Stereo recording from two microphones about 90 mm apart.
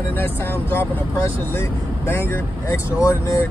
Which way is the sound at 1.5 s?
25° left (ahead or behind).